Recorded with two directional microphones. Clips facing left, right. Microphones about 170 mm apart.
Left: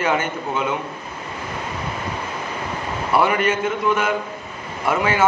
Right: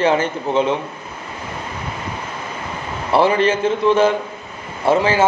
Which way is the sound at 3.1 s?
30° right (ahead or behind).